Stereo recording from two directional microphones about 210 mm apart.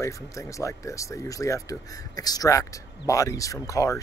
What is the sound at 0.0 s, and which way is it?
Speech, 15° left (ahead or behind).